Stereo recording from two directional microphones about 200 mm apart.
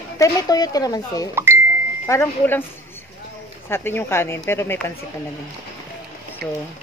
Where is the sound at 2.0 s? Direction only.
10° left (ahead or behind).